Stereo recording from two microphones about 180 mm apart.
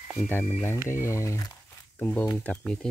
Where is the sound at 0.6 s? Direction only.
15° left (ahead or behind).